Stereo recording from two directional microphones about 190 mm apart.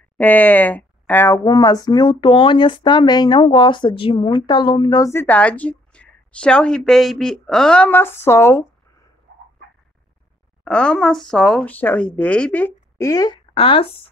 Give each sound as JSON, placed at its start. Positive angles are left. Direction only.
{"t": 0.2, "sound": "speech", "side_deg": 10}
{"t": 10.6, "sound": "speech", "side_deg": 5}
{"t": 13.6, "sound": "speech", "side_deg": 30}